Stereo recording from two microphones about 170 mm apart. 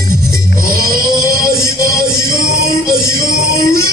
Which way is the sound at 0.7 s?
60° right (ahead or behind).